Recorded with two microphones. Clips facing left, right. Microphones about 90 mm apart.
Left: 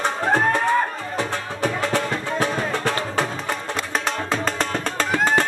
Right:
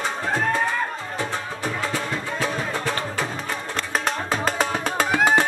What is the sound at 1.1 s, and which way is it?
Music, 65° left (ahead or behind).